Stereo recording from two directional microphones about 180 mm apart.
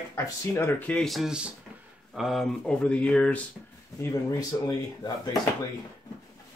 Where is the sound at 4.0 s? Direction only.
20° left (ahead or behind).